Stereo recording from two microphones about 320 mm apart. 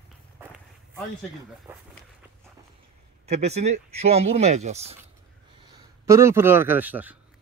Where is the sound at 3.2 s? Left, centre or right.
Centre.